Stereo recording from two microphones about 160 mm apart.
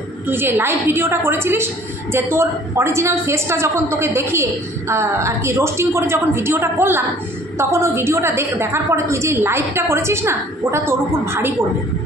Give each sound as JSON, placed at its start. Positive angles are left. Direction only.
{"t": 0.3, "sound": "a woman's voice", "side_deg": -15}